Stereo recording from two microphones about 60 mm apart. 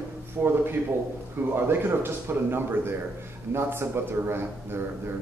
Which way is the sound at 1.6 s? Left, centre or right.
Right.